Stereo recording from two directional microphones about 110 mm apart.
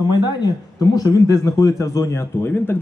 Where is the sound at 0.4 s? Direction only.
35° left (ahead or behind).